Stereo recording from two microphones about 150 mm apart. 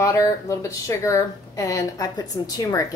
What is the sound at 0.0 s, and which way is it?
Speech, 25° left (ahead or behind).